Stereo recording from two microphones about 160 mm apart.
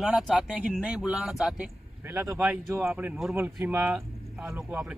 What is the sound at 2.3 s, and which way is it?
Speech, 10° right (ahead or behind).